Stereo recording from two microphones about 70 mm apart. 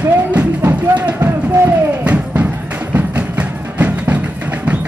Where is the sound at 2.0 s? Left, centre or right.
Centre.